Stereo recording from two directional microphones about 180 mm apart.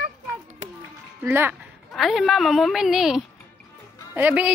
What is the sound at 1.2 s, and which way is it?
Speech, 15° right (ahead or behind).